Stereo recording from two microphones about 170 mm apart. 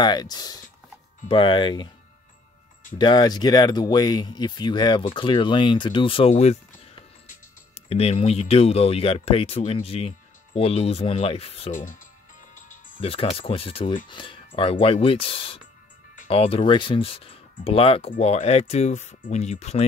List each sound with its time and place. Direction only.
0.0 s speech: 25° left (ahead or behind)
3.0 s speech: 25° left (ahead or behind)
11.7 s speech: 50° left (ahead or behind)
12.5 s music: 50° left (ahead or behind)
13.0 s speech: 35° left (ahead or behind)